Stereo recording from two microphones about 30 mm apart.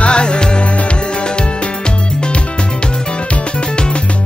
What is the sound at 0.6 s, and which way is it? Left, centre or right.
Music, left.